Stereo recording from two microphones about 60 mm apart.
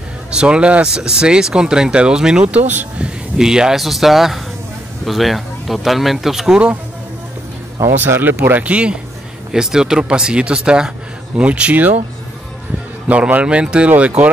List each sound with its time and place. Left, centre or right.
0.3 s speech: centre
2.4 s speech: right
3.3 s speech: centre
7.9 s speech: right
8.6 s speech: right
9.5 s speech: centre; by 11.9 s right
13.1 s speech: right